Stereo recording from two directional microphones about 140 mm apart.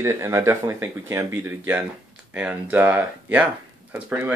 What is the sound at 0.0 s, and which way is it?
Speech, 20° right (ahead or behind).